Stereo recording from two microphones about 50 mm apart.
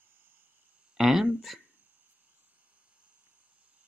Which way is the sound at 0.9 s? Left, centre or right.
Centre.